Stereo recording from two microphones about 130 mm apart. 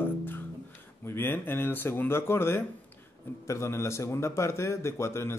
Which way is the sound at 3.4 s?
20° left (ahead or behind).